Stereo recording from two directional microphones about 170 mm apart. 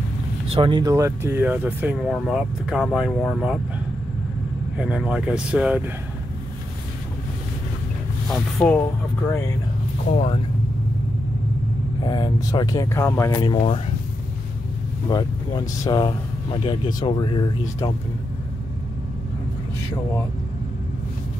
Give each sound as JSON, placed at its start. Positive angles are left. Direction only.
{"t": 0.5, "sound": "speech", "side_deg": -30}
{"t": 4.7, "sound": "speech", "side_deg": -5}
{"t": 8.3, "sound": "speech", "side_deg": 5}
{"t": 12.0, "sound": "speech", "side_deg": 25}
{"t": 15.0, "sound": "speech", "side_deg": 25}